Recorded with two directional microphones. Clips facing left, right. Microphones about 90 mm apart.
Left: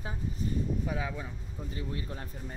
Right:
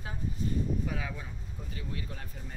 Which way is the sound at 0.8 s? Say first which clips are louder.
Left 2 dB; 15° left (ahead or behind).